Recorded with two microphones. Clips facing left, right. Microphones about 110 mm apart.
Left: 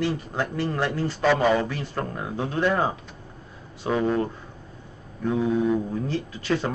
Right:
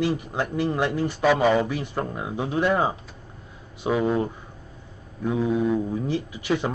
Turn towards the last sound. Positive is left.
turn(degrees=-15)  # may be behind; listen again after turning